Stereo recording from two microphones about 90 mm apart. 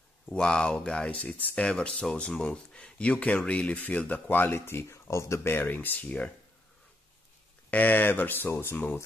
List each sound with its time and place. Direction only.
0.3 s speech: 10° left (ahead or behind)
7.7 s speech: 20° left (ahead or behind)